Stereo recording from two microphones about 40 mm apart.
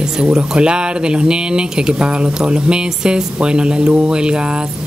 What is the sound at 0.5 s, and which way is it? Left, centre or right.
Speech, right.